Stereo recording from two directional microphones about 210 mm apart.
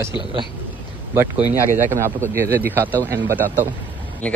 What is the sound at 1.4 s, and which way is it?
Speech, 15° left (ahead or behind).